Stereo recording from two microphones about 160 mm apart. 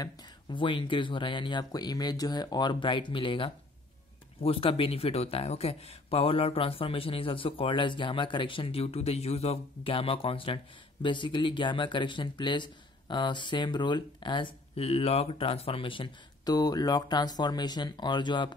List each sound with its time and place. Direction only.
0.0 s speech: 30° left (ahead or behind)